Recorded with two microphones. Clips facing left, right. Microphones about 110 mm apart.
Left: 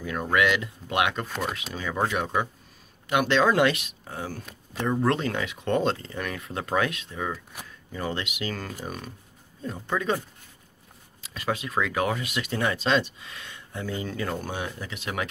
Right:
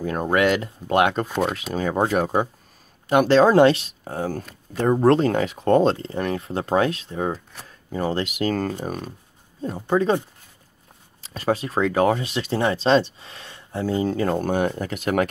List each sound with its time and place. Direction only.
0.0 s speech: 40° right (ahead or behind)
11.2 s speech: 35° right (ahead or behind)
14.5 s speech: 50° right (ahead or behind)